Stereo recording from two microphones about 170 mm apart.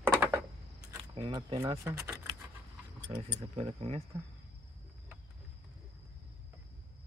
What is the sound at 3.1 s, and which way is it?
Speech, 30° right (ahead or behind).